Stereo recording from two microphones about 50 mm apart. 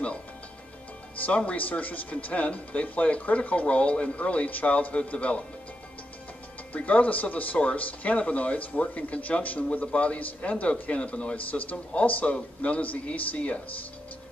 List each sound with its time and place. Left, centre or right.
1.1 s speech: left
6.7 s speech: left